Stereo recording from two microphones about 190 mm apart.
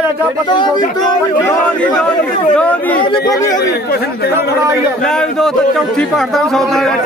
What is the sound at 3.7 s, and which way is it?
Speech, 55° left (ahead or behind).